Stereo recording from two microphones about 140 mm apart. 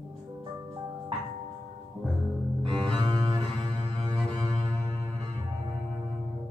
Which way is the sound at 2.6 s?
40° right (ahead or behind).